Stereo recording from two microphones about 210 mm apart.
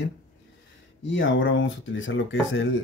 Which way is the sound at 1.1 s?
60° left (ahead or behind).